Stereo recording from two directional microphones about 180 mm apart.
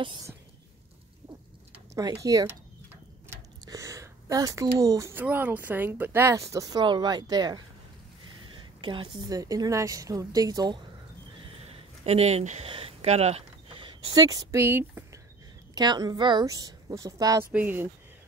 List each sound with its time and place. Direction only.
0.0 s a woman's voice: 25° right (ahead or behind)
3.3 s a woman's voice: 15° right (ahead or behind)
11.3 s a sound: 35° right (ahead or behind); by 15.0 s 15° right (ahead or behind)
15.7 s a woman's voice: 25° right (ahead or behind)
17.5 s speech: 10° right (ahead or behind)